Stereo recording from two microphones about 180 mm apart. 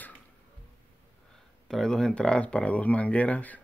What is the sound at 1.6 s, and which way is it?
Speech, 5° left (ahead or behind).